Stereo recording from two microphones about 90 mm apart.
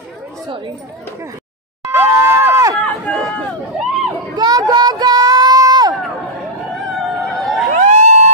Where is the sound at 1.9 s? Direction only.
25° right (ahead or behind).